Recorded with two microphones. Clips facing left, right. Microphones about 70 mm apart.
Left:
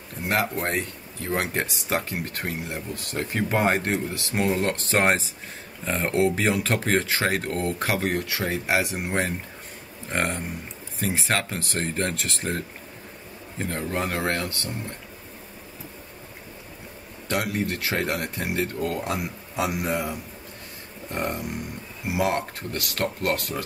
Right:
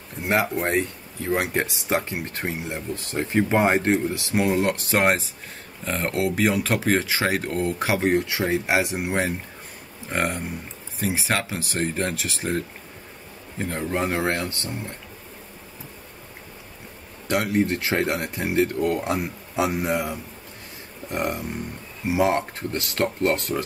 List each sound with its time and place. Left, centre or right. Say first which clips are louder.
0.2 s speech: right 2 dB; centre
4.8 s speech: right 1 dB; centre; by 8.8 s right
8.9 s speech: right 2 dB; centre
13.7 s speech: right 3 dB; centre
17.3 s speech: right 4 dB; right